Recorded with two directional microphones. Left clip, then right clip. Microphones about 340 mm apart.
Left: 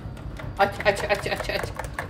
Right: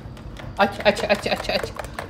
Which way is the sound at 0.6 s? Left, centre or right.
Right.